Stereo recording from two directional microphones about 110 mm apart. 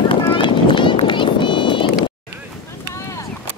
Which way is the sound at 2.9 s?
25° left (ahead or behind).